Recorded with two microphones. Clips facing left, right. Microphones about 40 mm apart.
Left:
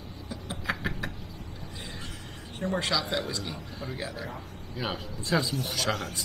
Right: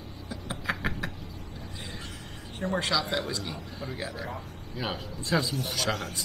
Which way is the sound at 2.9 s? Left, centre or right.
Right.